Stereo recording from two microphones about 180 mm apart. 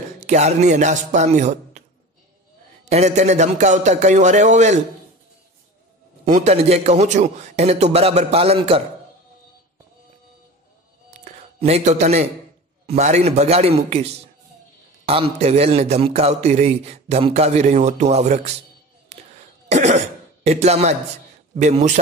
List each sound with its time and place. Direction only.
0.2 s a man's voice: 40° right (ahead or behind)
6.2 s a man's voice: 40° right (ahead or behind)
11.1 s a sound: 40° right (ahead or behind)
12.8 s a man's voice: 40° right (ahead or behind)
19.1 s a sound: 40° right (ahead or behind)
19.7 s cough: 40° right (ahead or behind)
20.4 s a man's voice: 35° right (ahead or behind)